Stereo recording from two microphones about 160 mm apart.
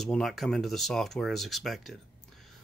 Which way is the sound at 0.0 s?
Centre (ahead or behind).